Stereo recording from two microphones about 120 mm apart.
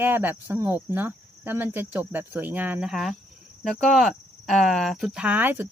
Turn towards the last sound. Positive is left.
turn(degrees=-15)  # may be behind; listen again after turning